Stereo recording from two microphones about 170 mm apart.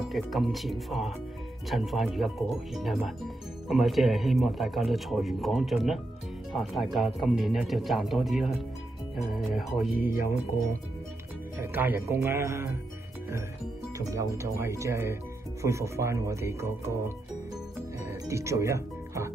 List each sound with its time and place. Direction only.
0.1 s speech: centre (ahead or behind)
9.9 s speech: 60° left (ahead or behind)
11.6 s speech: 10° right (ahead or behind)
13.9 s speech: 15° right (ahead or behind)
18.0 s music: 15° right (ahead or behind)